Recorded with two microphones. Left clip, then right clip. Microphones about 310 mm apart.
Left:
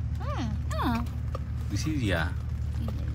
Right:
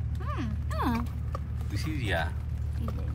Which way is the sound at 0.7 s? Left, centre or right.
Centre.